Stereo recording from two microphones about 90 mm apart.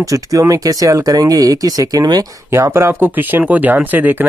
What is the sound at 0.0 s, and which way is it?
Speech, 40° right (ahead or behind).